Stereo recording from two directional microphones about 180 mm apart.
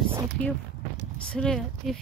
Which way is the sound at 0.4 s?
5° left (ahead or behind).